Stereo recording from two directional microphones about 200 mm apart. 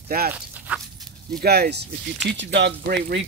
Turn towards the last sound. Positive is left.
turn(degrees=-55)  # may be behind; listen again after turning